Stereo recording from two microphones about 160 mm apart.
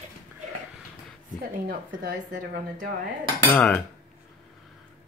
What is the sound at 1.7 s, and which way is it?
Speech, 65° right (ahead or behind).